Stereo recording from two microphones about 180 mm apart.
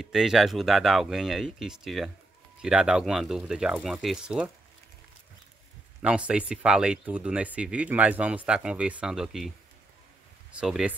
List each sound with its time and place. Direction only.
0.0 s speech: centre (ahead or behind)
6.0 s speech: 5° right (ahead or behind)
10.5 s speech: 5° right (ahead or behind)